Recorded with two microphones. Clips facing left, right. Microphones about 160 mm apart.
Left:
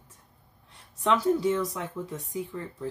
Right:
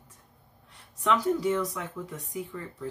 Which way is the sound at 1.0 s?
30° left (ahead or behind).